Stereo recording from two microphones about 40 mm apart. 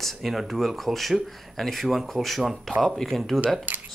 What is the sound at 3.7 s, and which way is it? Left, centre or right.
Speech, right.